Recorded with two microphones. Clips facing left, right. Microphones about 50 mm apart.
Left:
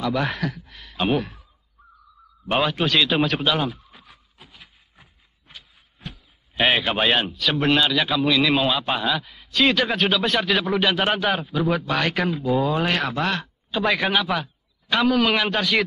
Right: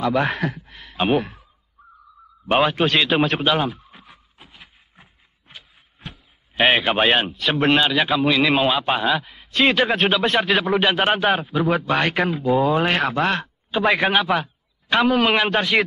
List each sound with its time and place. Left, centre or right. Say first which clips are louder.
0.0 s a man's voice: right 3 dB; centre
2.4 s a sound: right 4 dB; centre
6.6 s a man's voice: right 3 dB; centre
12.3 s a man's voice: right 3 dB; centre